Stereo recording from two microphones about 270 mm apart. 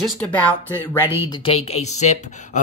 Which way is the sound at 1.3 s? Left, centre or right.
Centre.